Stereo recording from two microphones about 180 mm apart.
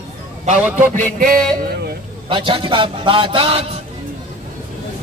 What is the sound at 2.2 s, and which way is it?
A man's voice, 30° right (ahead or behind).